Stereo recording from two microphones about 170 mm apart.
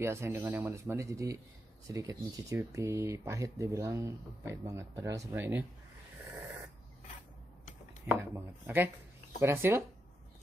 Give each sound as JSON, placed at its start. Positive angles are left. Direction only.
{"t": 0.0, "sound": "speech", "side_deg": -15}
{"t": 8.1, "sound": "speech", "side_deg": -10}